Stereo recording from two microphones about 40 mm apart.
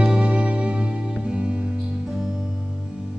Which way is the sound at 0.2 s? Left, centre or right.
Right.